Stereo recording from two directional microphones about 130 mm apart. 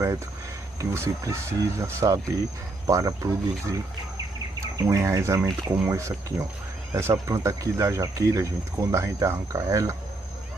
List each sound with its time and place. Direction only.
0.7 s speech: 20° right (ahead or behind)